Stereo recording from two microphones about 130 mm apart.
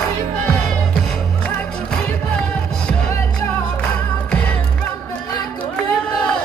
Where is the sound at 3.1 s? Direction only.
25° left (ahead or behind).